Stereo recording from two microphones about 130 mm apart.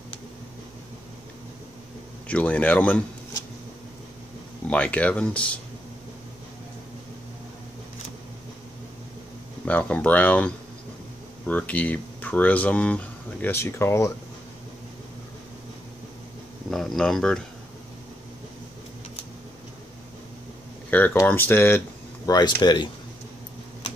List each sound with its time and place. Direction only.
2.2 s speech: 10° left (ahead or behind)
4.6 s speech: 10° left (ahead or behind)
9.7 s speech: 10° left (ahead or behind)
16.7 s speech: centre (ahead or behind)
20.9 s speech: 15° left (ahead or behind)
22.2 s speech: 30° left (ahead or behind)